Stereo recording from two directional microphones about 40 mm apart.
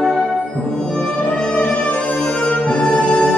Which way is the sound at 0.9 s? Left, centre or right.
Left.